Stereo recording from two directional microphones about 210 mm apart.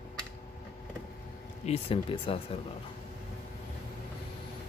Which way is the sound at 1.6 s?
25° left (ahead or behind).